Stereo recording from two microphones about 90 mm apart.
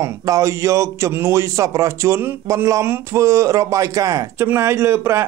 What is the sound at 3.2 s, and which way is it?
Speech, 35° right (ahead or behind).